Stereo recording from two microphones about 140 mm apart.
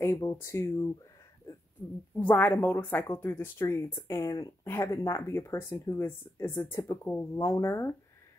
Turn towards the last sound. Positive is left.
turn(degrees=20)  # may be behind; listen again after turning